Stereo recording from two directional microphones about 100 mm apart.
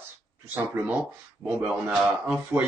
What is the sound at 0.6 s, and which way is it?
Speech, 20° right (ahead or behind).